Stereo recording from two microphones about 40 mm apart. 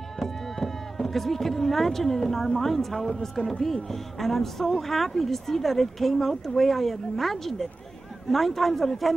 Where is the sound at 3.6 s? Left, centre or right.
Centre.